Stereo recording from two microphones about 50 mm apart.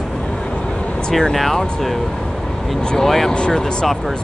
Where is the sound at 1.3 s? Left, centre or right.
Centre.